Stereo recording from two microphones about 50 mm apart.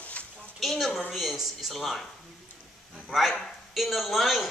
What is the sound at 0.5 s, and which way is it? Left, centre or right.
A woman's voice, centre.